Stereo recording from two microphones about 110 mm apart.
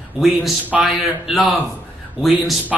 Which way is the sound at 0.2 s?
Centre (ahead or behind).